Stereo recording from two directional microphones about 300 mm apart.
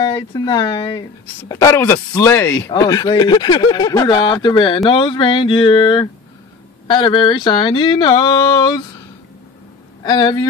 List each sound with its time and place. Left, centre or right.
0.0 s speech: centre
10.0 s speech: centre